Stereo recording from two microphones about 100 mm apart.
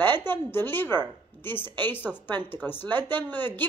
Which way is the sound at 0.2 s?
20° left (ahead or behind).